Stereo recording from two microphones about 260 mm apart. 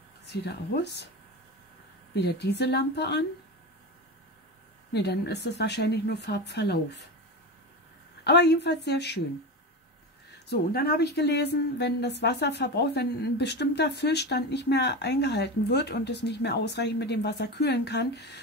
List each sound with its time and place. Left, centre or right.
0.3 s a woman's voice: left
2.1 s a woman's voice: left
4.9 s a woman's voice: left
8.2 s a woman's voice: left
10.5 s a woman's voice: left